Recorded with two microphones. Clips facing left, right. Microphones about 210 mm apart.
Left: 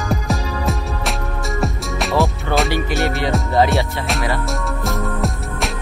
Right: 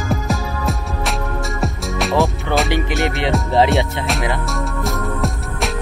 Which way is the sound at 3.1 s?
20° right (ahead or behind).